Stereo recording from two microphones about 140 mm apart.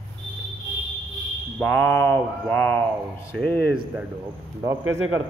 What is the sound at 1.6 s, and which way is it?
Speech, 10° left (ahead or behind).